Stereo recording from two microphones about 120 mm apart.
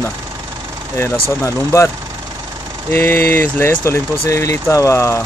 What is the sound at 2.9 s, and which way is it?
Speech, 20° left (ahead or behind).